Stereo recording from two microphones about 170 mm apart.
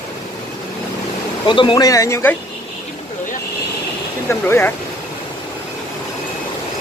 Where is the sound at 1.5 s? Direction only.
25° left (ahead or behind).